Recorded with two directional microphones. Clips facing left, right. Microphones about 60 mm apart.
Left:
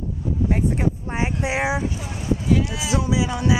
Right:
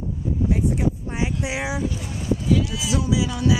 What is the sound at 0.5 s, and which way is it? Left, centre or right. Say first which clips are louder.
Speech: even; left.